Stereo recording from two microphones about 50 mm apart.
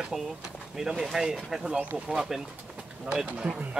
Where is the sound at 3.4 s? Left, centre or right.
Right.